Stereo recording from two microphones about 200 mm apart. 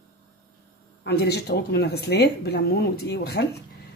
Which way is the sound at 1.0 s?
55° left (ahead or behind).